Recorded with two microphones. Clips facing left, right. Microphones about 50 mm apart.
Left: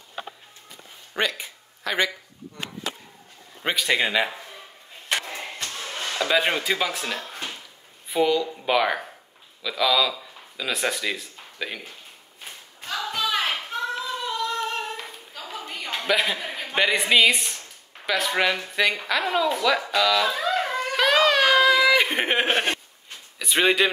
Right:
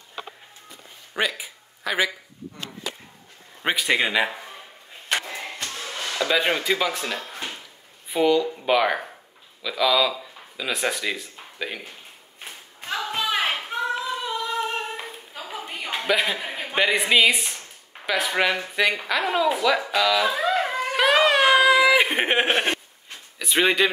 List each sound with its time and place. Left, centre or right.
1.1 s speech: centre
3.6 s a man's voice: centre
5.9 s a sound: left
6.2 s speech: centre
11.3 s a sound: centre
12.4 s clapping: right
16.2 s a man's voice: centre
18.8 s a sound: centre
23.4 s speech: centre